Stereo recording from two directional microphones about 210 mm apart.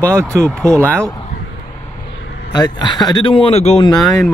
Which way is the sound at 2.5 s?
20° left (ahead or behind).